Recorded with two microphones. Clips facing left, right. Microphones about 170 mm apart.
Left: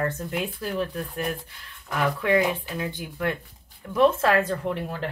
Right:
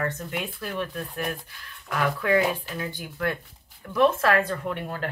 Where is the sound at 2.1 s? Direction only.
20° left (ahead or behind).